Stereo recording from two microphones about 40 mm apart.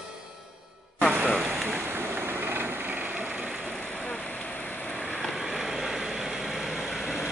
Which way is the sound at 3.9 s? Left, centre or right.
Left.